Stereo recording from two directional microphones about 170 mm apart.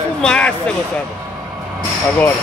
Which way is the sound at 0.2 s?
5° left (ahead or behind).